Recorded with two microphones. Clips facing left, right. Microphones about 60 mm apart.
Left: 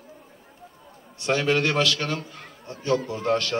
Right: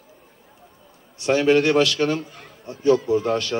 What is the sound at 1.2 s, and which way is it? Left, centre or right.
A man's voice, centre.